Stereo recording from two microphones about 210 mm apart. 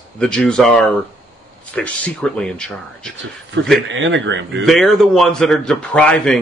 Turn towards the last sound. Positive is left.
turn(degrees=5)  # may be behind; listen again after turning